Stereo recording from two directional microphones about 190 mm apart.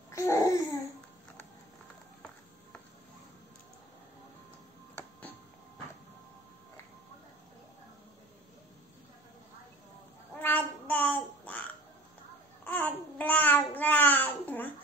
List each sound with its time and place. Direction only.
0.1 s babbling: 15° left (ahead or behind)
10.4 s child singing: 10° left (ahead or behind)
12.6 s babbling: 10° left (ahead or behind)